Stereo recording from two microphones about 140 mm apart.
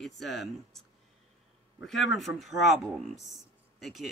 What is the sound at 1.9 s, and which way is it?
Speech, centre (ahead or behind).